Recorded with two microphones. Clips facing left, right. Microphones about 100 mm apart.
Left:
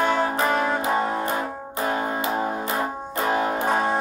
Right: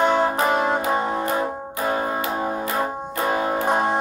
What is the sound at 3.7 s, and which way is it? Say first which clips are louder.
Music: right 3 dB; 15° right (ahead or behind).